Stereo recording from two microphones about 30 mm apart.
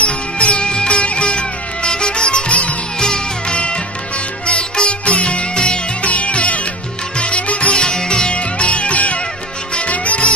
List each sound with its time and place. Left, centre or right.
0.0 s music: left
0.7 s music: left
3.5 s music: left
6.0 s music: left
7.7 s sitar: left
8.3 s music: left